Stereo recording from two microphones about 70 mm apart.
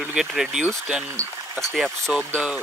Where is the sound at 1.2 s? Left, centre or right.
Right.